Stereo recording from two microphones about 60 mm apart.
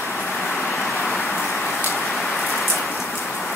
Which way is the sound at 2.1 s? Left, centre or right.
Centre.